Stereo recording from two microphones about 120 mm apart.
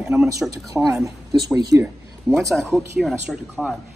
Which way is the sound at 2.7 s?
Centre (ahead or behind).